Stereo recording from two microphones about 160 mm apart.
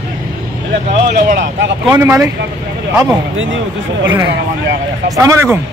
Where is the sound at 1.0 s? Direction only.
60° right (ahead or behind).